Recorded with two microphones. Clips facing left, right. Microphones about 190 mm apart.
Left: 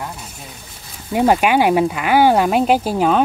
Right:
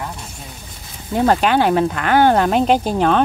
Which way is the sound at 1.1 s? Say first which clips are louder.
Left 1 dB; 10° left (ahead or behind).